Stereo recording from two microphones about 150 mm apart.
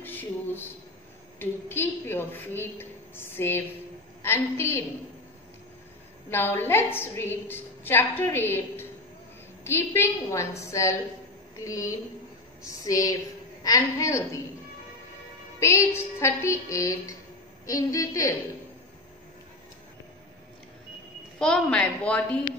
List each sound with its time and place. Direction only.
0.0 s a sound: 15° left (ahead or behind)
1.4 s a woman's voice: 15° left (ahead or behind)
6.3 s a woman's voice: 15° left (ahead or behind)
15.6 s a woman's voice: 20° left (ahead or behind)
21.4 s a woman's voice: 5° left (ahead or behind)